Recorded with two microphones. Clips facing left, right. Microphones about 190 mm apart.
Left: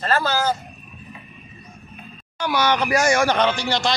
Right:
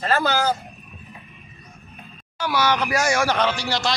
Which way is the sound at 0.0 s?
10° right (ahead or behind).